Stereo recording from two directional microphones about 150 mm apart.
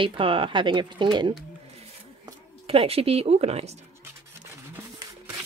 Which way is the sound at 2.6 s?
40° right (ahead or behind).